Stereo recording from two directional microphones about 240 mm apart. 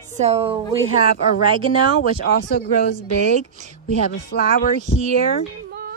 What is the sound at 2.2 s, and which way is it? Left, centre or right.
Speech, left.